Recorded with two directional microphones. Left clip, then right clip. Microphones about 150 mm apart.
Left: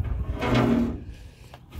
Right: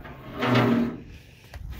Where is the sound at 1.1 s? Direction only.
30° left (ahead or behind).